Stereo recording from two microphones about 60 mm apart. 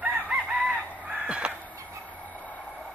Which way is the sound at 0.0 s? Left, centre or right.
Right.